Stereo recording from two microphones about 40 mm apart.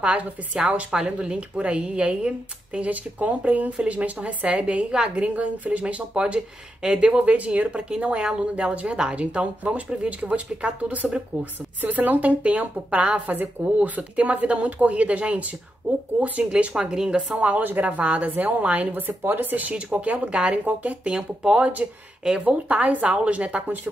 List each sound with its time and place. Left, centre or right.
0.0 s speech: right
2.9 s speech: right
5.2 s speech: right
6.1 s speech: right
7.2 s speech: right
11.8 s speech: right
16.7 s speech: centre
17.3 s speech: right
18.9 s speech: right
19.5 s speech: right
21.1 s speech: right